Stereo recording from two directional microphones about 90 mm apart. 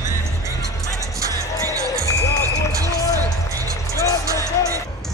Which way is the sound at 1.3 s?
35° right (ahead or behind).